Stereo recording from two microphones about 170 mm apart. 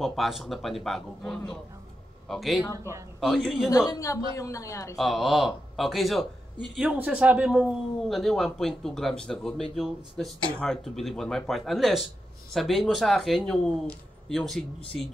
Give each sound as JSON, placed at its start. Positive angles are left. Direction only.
{"t": 0.0, "sound": "a man's voice", "side_deg": 0}
{"t": 2.7, "sound": "a man's voice", "side_deg": -15}
{"t": 3.2, "sound": "speech", "side_deg": 0}
{"t": 3.9, "sound": "a woman's voice", "side_deg": 20}
{"t": 4.9, "sound": "speech", "side_deg": 0}